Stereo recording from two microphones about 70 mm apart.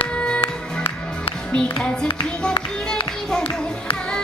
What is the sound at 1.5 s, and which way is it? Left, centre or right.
Music, centre.